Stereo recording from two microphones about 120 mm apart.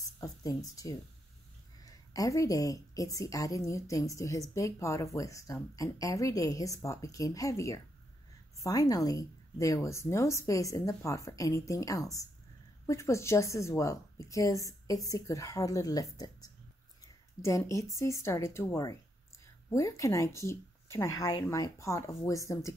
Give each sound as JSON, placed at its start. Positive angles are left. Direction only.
{"t": 0.2, "sound": "a woman's voice", "side_deg": 30}